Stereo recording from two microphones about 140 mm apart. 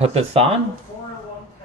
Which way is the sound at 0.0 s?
45° right (ahead or behind).